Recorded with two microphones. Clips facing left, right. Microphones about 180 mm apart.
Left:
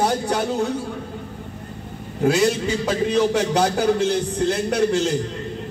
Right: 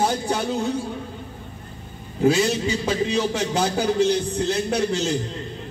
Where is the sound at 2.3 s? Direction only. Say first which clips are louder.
Left 2 dB; 50° left (ahead or behind).